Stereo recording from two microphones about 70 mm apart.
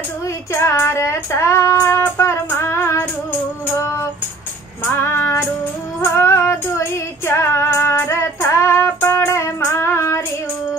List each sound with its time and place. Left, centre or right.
0.2 s child singing: left
4.8 s female singing: left